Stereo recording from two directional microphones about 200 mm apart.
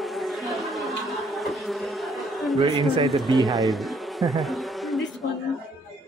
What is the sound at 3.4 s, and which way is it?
Bee, centre (ahead or behind).